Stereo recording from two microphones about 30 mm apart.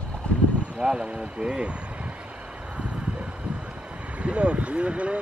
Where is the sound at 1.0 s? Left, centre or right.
Right.